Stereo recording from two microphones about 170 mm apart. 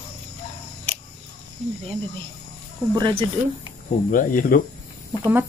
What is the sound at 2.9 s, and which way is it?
Speech, 30° right (ahead or behind).